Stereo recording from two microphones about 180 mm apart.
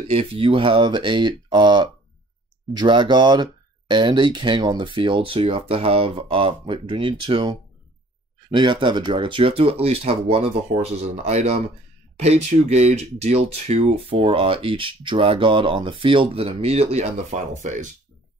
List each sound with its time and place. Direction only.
0.1 s speech: 30° right (ahead or behind)